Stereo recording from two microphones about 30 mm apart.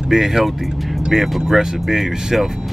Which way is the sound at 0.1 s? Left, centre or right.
Centre.